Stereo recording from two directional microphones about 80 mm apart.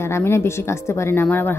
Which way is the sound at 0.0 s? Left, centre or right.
Left.